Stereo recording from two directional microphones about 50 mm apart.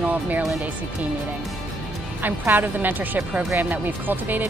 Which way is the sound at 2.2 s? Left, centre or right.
Right.